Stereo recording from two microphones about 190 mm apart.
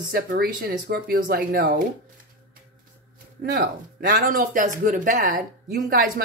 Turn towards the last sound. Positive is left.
turn(degrees=-50)  # may be behind; listen again after turning